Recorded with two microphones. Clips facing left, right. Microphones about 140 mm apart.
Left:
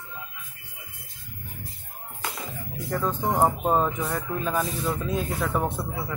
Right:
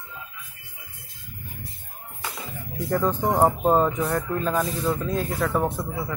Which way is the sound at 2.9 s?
15° right (ahead or behind).